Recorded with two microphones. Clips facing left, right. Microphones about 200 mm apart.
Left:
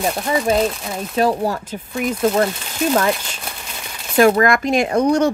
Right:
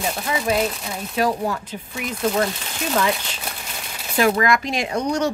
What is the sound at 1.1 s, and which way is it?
Speech, 35° left (ahead or behind).